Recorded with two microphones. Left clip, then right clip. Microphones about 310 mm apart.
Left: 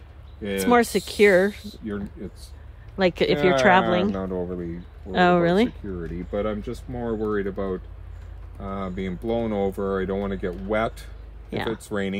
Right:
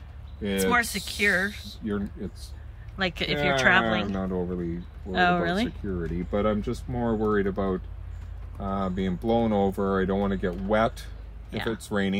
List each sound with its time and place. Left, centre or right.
0.4 s speech: centre
3.0 s speech: centre
5.1 s speech: left
5.9 s speech: centre
11.5 s speech: centre
11.9 s speech: centre